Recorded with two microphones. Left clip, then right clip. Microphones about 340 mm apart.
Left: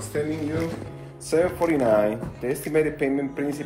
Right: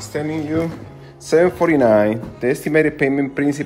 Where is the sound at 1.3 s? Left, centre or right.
Right.